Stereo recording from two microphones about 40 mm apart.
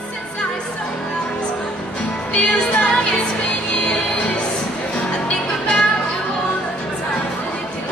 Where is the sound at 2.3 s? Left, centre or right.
Left.